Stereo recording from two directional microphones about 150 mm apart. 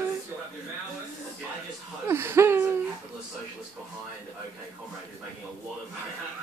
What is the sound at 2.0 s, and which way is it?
Wheeze, 15° right (ahead or behind).